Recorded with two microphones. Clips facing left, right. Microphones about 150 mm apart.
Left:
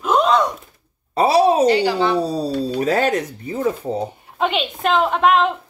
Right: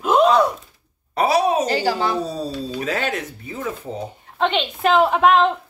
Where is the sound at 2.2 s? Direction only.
35° left (ahead or behind).